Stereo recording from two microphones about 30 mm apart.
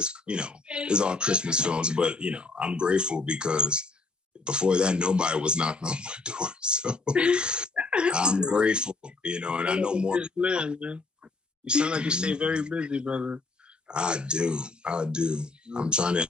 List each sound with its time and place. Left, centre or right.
0.0 s speech: right